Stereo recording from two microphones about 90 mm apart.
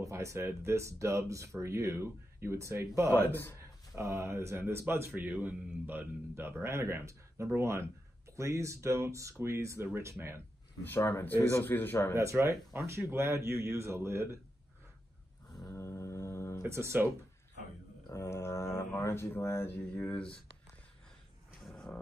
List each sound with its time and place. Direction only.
0.0 s speech: 35° right (ahead or behind)
3.2 s speech: 20° left (ahead or behind)
3.9 s a man's voice: 35° right (ahead or behind)
10.8 s speech: 25° left (ahead or behind)
12.2 s a man's voice: 35° right (ahead or behind)
15.7 s mantra: 30° left (ahead or behind)
16.6 s a man's voice: 30° right (ahead or behind)
18.1 s speech: 30° left (ahead or behind); by 20.3 s 15° left (ahead or behind)
21.5 s a sound: centre (ahead or behind)